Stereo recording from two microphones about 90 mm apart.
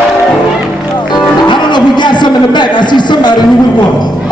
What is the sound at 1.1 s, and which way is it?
Speech, 55° left (ahead or behind).